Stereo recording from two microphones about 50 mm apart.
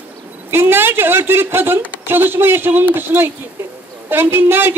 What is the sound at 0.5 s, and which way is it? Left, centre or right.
A woman's voice, right.